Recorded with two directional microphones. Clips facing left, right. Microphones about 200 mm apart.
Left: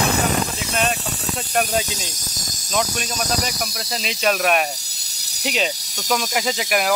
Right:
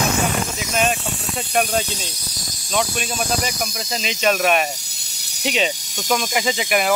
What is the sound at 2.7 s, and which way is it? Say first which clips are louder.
Speech: right 1 dB; 5° right (ahead or behind).